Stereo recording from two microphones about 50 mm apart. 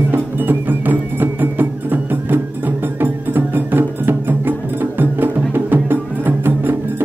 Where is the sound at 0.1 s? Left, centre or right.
Right.